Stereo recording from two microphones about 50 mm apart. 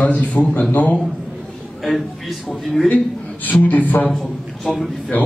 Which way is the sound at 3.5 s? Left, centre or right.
Left.